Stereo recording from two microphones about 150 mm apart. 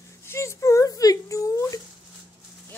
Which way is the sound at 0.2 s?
15° left (ahead or behind).